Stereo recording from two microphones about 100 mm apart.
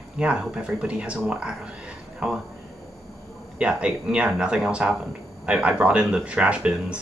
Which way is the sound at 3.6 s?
10° right (ahead or behind).